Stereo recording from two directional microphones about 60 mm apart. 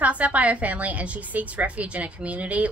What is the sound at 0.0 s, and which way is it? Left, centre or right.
A woman's voice, right.